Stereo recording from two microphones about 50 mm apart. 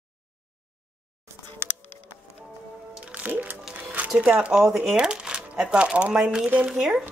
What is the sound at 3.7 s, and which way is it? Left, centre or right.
Music, right.